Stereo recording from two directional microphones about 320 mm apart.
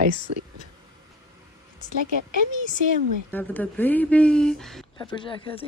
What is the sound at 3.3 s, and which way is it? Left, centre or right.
A woman's voice, centre.